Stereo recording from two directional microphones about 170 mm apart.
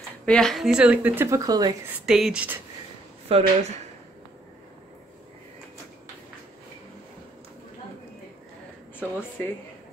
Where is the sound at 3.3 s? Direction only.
35° right (ahead or behind).